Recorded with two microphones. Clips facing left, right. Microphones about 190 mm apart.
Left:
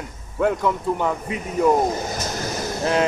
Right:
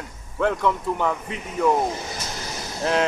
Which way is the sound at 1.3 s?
40° left (ahead or behind).